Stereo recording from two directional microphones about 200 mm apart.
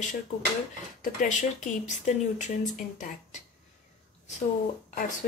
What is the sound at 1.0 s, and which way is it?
Speech, 40° left (ahead or behind).